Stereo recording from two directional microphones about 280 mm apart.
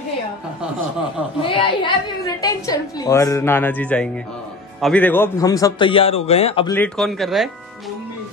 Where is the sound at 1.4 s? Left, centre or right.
Centre.